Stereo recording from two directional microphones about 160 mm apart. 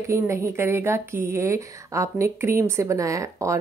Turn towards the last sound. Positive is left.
turn(degrees=-20)  # may be behind; listen again after turning